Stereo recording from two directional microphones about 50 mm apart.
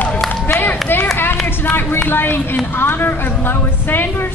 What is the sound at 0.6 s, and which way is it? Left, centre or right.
Clapping, left.